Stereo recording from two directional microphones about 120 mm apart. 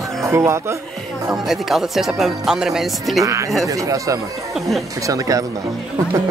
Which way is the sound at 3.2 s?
25° right (ahead or behind).